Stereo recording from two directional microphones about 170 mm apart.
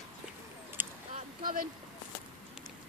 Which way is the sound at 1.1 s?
55° right (ahead or behind).